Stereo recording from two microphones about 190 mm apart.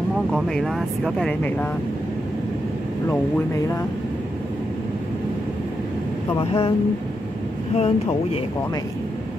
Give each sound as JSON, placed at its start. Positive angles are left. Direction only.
{"t": 0.3, "sound": "speech", "side_deg": 0}
{"t": 6.3, "sound": "speech", "side_deg": 30}
{"t": 7.7, "sound": "speech", "side_deg": 30}